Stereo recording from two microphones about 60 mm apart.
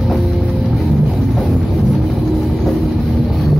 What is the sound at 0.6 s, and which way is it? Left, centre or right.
Music, right.